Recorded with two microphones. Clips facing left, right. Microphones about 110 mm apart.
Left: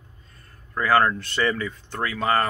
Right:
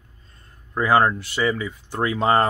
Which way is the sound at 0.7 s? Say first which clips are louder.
Right 2 dB; 15° right (ahead or behind).